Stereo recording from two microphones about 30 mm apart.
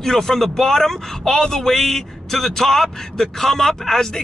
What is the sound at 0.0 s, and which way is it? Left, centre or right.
Speech, centre.